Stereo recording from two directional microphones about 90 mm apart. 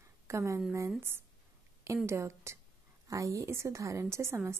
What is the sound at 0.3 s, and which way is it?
A woman's voice, 35° right (ahead or behind).